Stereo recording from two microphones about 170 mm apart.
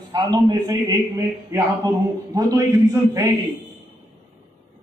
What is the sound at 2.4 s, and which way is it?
Speech, 20° right (ahead or behind).